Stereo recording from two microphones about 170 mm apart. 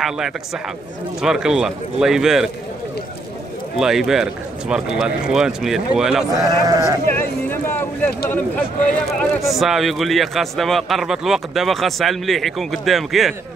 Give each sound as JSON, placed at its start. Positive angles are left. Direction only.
{"t": 1.2, "sound": "a man's voice", "side_deg": -5}
{"t": 3.7, "sound": "a man's voice", "side_deg": -5}
{"t": 6.3, "sound": "speech", "side_deg": -20}
{"t": 7.1, "sound": "a sound", "side_deg": 10}
{"t": 8.3, "sound": "speech", "side_deg": 10}
{"t": 9.2, "sound": "a man's voice", "side_deg": 0}